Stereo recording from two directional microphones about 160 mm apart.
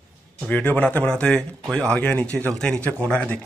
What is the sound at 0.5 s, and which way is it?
A man's voice, 10° left (ahead or behind).